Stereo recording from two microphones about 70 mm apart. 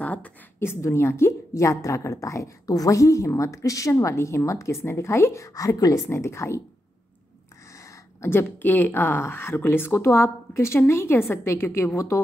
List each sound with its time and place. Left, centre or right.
0.0 s a sound: centre
0.6 s speech: left
1.5 s a woman's voice: left
6.0 s speech: left
7.7 s a sound: left
8.3 s speech: left